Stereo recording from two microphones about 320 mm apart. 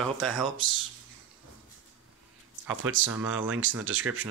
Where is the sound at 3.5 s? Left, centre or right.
Right.